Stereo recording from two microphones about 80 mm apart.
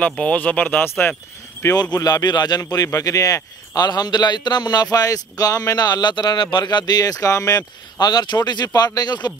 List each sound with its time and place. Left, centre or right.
0.0 s speech: centre
1.6 s a man's voice: left
2.0 s a man's voice: left
2.6 s a man's voice: left